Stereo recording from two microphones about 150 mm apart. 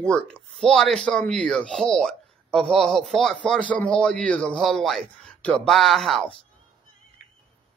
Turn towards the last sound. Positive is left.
turn(degrees=65)  # may be behind; listen again after turning